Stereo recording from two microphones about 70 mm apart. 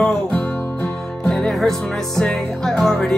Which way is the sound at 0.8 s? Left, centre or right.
Centre.